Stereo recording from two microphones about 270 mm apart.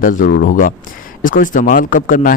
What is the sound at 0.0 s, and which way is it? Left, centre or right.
A man's voice, left.